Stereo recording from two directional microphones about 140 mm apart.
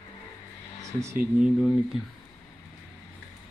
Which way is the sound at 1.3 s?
5° right (ahead or behind).